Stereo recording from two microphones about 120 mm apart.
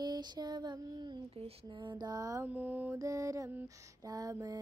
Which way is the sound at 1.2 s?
55° right (ahead or behind).